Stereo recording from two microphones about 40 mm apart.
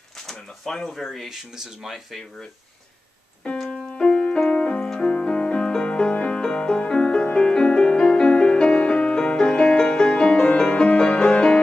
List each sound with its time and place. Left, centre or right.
0.3 s a sound: centre
0.9 s speech: centre
1.3 s speech: centre
3.7 s keyboard: left
4.9 s music: left